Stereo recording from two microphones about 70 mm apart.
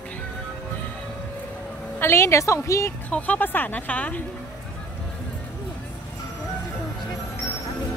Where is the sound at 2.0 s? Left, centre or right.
Left.